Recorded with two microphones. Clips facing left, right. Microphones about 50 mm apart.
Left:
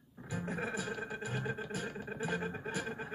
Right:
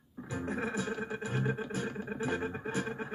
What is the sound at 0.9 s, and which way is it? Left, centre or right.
Speech, right.